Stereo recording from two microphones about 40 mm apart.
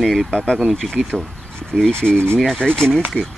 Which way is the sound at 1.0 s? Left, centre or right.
Right.